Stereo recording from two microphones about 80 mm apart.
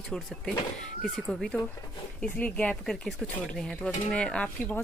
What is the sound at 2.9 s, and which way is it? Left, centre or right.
Speech, centre.